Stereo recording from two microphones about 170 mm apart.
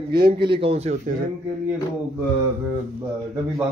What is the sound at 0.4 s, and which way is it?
Speech, 30° right (ahead or behind).